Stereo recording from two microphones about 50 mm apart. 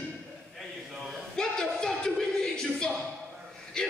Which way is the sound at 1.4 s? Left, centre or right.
Centre.